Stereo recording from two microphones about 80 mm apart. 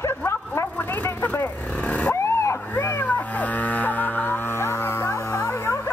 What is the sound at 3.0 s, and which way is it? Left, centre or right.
Cat, centre.